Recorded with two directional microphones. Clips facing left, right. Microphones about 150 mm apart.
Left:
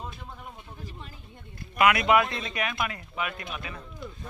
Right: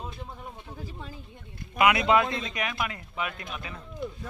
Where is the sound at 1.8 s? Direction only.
20° right (ahead or behind).